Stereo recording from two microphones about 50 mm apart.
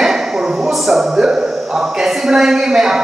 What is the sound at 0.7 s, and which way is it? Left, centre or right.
A man's voice, centre.